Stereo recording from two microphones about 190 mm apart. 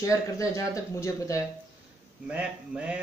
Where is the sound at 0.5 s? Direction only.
15° left (ahead or behind).